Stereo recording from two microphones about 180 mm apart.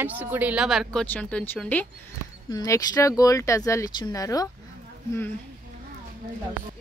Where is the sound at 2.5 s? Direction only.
20° left (ahead or behind).